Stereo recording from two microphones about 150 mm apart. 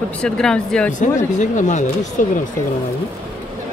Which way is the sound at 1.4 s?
55° left (ahead or behind).